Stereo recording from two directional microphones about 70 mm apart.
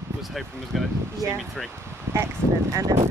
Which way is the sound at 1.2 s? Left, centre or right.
Right.